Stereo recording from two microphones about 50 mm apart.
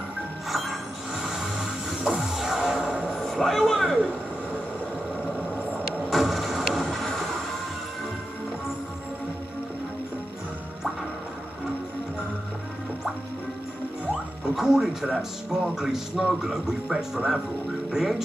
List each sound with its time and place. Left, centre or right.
0.5 s mechanisms: centre
3.3 s speech: centre
6.0 s vehicle: centre
14.4 s speech: centre